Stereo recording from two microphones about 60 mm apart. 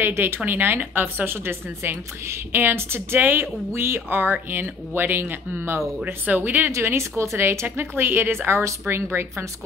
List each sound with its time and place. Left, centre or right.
0.0 s a woman's voice: right
6.7 s a woman's voice: right